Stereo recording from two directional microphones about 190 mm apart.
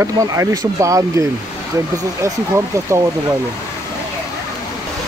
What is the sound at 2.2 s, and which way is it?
Speech, 15° right (ahead or behind).